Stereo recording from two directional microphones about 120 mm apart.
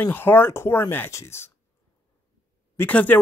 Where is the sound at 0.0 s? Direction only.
15° left (ahead or behind).